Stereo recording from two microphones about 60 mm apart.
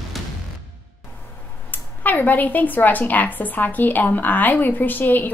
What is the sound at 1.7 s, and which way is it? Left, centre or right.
A woman's voice, left.